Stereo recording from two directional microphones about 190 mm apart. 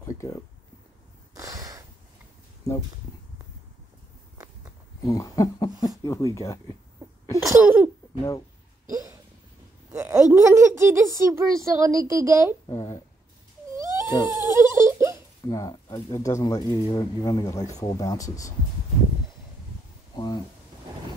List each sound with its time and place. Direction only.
1.3 s a sound: 15° right (ahead or behind)
2.6 s speech: 15° left (ahead or behind)
5.0 s speech: 15° left (ahead or behind)
7.3 s speech: 10° right (ahead or behind)
9.9 s speech: 10° right (ahead or behind)
12.6 s speech: 20° left (ahead or behind)
13.7 s a sound: 15° right (ahead or behind)
15.4 s speech: 20° left (ahead or behind)
20.2 s speech: 25° left (ahead or behind)